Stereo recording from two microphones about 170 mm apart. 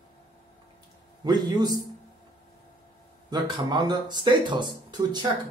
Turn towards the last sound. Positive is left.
turn(degrees=-25)  # may be behind; listen again after turning